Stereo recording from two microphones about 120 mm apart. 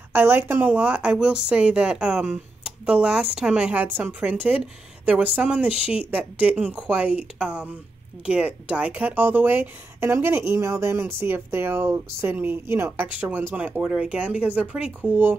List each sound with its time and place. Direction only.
0.1 s a woman's voice: 15° right (ahead or behind)